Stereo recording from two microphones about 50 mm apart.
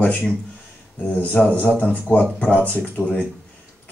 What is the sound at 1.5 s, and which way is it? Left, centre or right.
Speech, left.